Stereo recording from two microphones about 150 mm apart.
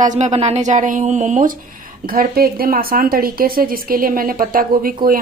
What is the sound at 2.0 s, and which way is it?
Speech, 80° right.